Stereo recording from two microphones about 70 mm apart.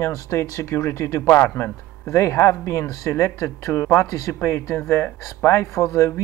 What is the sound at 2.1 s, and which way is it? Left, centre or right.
Speech, left.